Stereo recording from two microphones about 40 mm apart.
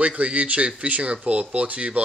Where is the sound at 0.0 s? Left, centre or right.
Right.